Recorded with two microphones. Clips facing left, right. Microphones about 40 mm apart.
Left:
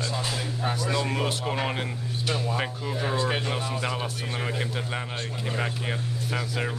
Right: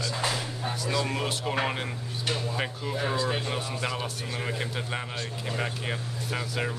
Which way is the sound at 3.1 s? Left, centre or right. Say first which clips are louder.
Left 3 dB; left.